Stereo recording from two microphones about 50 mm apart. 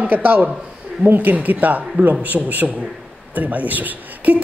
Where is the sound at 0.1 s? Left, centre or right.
Right.